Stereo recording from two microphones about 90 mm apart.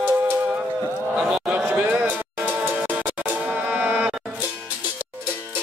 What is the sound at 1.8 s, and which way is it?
Music, 20° right (ahead or behind).